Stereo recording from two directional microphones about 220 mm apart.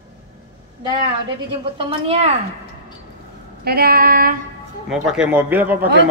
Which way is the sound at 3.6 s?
45° right (ahead or behind).